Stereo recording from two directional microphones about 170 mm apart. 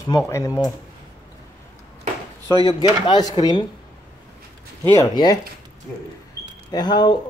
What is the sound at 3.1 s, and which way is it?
Speech, 25° left (ahead or behind).